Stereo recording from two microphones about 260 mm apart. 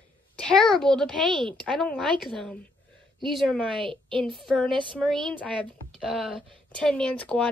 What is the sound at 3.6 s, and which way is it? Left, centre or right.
Speech, centre.